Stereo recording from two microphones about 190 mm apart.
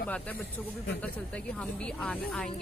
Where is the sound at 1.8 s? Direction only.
5° left (ahead or behind).